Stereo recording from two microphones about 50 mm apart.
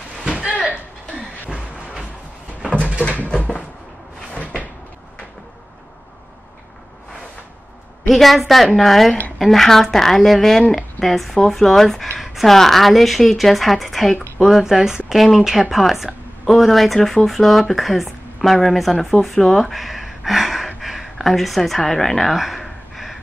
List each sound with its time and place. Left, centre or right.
0.4 s a sound: left
3.0 s a sound: left
4.3 s cupboard open or close: left
8.1 s speech: centre
14.6 s speech: centre
22.3 s gasp: centre